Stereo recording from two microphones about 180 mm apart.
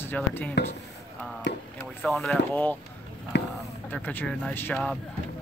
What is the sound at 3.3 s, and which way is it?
Speech, 70° left (ahead or behind).